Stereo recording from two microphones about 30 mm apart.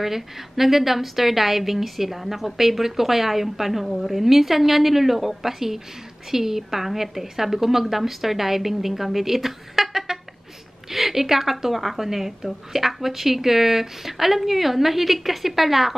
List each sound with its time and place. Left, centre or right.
0.0 s a woman's voice: centre